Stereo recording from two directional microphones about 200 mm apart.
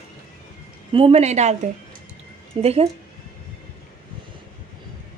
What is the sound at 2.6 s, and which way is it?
Speech, 25° right (ahead or behind).